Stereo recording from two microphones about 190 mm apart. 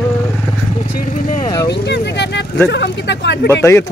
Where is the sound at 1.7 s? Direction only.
65° left (ahead or behind).